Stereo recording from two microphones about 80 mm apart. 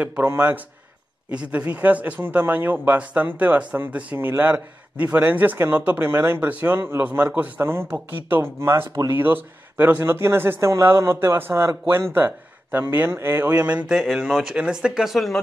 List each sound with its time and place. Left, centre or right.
0.0 s speech: centre; by 9.1 s right
9.1 s speech: right
10.7 s speech: right; by 13.9 s centre
13.9 s speech: centre
14.4 s speech: centre